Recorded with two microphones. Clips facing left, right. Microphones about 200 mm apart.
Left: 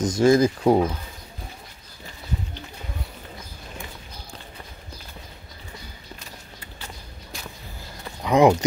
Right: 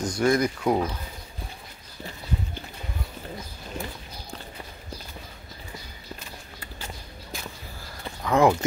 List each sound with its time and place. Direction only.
0.0 s speech: 25° left (ahead or behind)
8.2 s speech: 15° left (ahead or behind)